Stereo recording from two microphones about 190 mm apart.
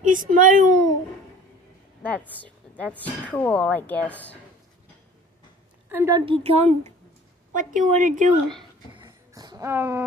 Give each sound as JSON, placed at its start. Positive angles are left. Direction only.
{"t": 0.0, "sound": "a woman's voice", "side_deg": -45}
{"t": 2.0, "sound": "a woman's voice", "side_deg": 10}
{"t": 5.9, "sound": "a woman's voice", "side_deg": -15}
{"t": 6.2, "sound": "a woman's voice", "side_deg": -30}
{"t": 8.9, "sound": "a sound", "side_deg": -20}